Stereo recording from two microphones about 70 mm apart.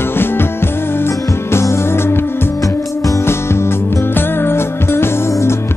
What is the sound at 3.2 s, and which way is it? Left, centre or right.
Music, left.